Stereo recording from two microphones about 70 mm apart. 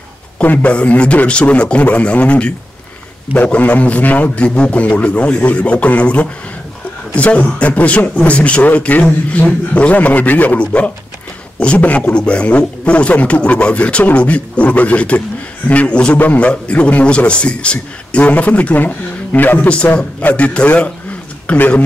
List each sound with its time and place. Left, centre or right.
0.4 s a man's voice: left